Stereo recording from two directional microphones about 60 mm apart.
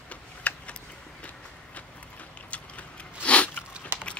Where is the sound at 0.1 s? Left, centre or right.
Left.